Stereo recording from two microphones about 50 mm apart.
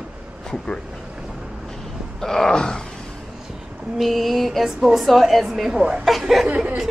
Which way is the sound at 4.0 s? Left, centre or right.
Centre.